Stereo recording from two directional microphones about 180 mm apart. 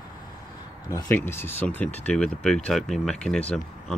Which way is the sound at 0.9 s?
10° left (ahead or behind).